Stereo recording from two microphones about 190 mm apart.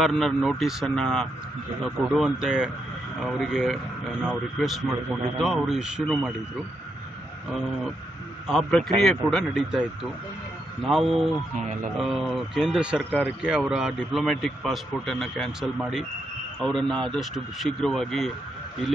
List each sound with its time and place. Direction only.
0.0 s a man's voice: centre (ahead or behind)
8.5 s a man's voice: 5° left (ahead or behind)